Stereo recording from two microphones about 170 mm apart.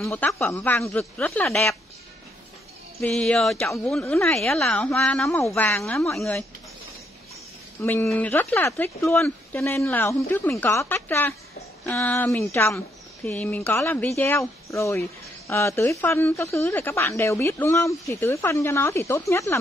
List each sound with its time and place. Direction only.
0.0 s speech: 5° left (ahead or behind)
3.0 s speech: 5° left (ahead or behind)
5.8 s speech: centre (ahead or behind)
7.8 s speech: 15° left (ahead or behind)